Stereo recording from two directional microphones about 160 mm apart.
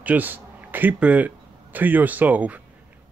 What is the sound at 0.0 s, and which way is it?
Speech, 10° right (ahead or behind).